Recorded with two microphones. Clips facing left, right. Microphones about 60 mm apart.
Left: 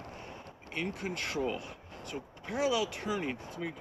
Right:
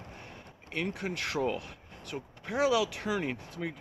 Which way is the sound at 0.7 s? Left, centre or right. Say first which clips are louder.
Right 2 dB; right.